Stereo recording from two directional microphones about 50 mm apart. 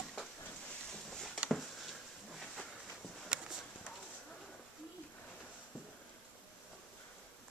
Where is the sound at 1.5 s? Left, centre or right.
Centre.